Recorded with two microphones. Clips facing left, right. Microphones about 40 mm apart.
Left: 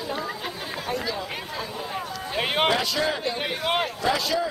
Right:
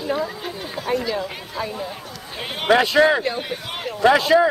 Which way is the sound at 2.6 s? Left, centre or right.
Right.